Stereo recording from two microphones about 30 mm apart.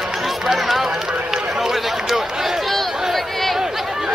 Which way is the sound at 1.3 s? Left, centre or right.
Centre.